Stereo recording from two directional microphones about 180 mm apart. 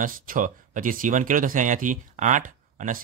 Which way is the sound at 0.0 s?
50° right (ahead or behind).